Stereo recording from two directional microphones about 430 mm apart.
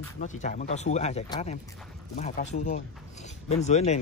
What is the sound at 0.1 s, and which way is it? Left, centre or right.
Speech, centre.